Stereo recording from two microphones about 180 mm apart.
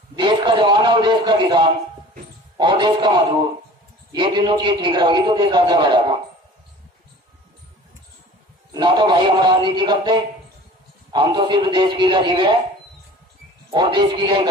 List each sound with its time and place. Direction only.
0.1 s a man's voice: 25° right (ahead or behind)
8.7 s a man's voice: 25° right (ahead or behind)
13.7 s a man's voice: 25° right (ahead or behind)